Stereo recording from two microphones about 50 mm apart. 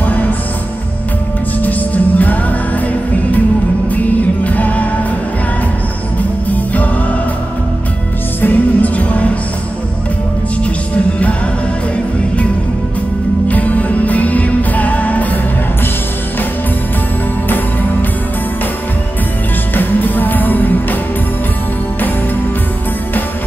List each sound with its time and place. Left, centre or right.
0.0 s music: left
1.6 s music: left
3.9 s music: left
6.5 s music: left
8.4 s music: left
13.5 s music: left
19.7 s music: left